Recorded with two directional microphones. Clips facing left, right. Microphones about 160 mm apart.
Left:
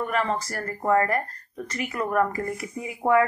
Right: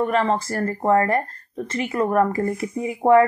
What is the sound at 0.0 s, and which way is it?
A woman's voice, 25° right (ahead or behind).